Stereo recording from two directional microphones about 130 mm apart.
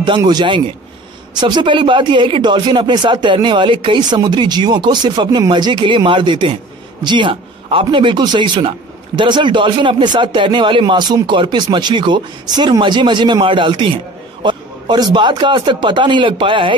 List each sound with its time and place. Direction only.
0.2 s a man's voice: 35° right (ahead or behind)